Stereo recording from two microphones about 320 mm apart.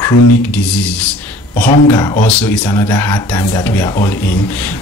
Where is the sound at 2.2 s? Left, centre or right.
Centre.